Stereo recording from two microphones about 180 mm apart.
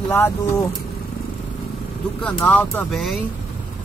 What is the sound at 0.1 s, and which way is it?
Speech, 10° left (ahead or behind).